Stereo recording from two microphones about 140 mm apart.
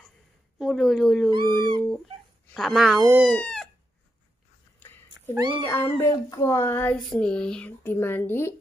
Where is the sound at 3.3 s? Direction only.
5° left (ahead or behind).